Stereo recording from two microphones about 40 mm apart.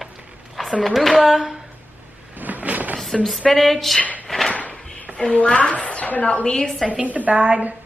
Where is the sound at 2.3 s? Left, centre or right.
Right.